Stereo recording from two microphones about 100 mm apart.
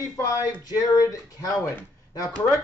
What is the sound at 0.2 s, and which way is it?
Speech, 35° left (ahead or behind).